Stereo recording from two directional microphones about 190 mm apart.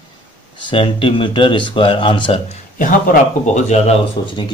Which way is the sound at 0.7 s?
30° left (ahead or behind).